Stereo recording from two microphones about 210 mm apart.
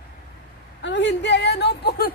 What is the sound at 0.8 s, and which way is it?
A woman's voice, 55° left (ahead or behind).